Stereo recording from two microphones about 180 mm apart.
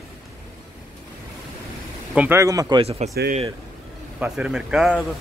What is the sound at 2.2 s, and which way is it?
Speech, 15° right (ahead or behind).